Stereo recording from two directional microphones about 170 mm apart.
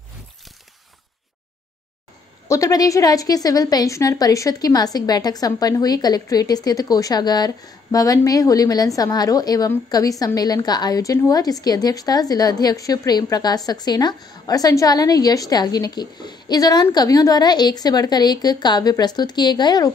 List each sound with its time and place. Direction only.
2.4 s a woman's voice: 20° left (ahead or behind)